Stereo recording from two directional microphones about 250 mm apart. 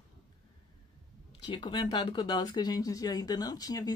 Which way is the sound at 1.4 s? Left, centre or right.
Centre.